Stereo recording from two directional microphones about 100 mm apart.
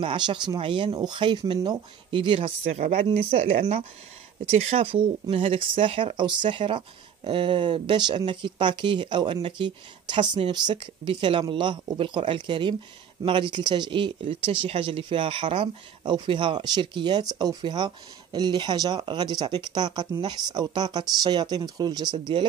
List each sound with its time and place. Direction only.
0.0 s speech: 60° right (ahead or behind)
0.9 s speech: 50° right (ahead or behind); by 3.1 s 90° right
3.3 s speech: 75° right (ahead or behind)
5.3 s speech: 70° right (ahead or behind); by 22.2 s 45° right (ahead or behind)